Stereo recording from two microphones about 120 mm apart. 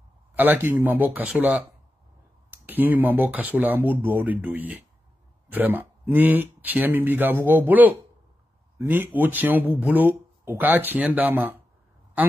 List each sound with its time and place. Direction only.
0.3 s a woman's voice: 15° right (ahead or behind)